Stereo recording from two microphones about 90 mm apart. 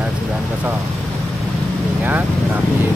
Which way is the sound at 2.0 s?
20° right (ahead or behind).